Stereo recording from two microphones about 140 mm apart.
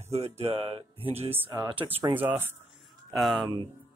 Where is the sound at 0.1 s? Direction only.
50° right (ahead or behind).